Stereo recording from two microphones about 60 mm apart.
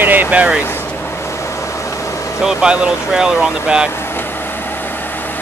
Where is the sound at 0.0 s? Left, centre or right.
Right.